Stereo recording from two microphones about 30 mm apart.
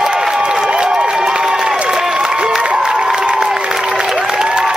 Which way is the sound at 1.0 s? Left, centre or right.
Right.